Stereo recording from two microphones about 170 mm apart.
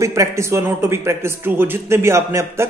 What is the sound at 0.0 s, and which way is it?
A man's voice, 20° right (ahead or behind).